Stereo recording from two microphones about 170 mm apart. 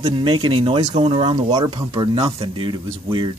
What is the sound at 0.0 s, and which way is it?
Speech, 30° right (ahead or behind).